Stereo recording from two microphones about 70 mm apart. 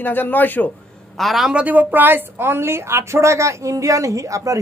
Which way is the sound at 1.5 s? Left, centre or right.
Right.